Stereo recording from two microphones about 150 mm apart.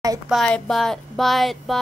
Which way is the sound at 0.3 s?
5° left (ahead or behind).